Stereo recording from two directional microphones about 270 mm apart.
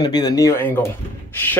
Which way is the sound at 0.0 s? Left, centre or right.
Centre.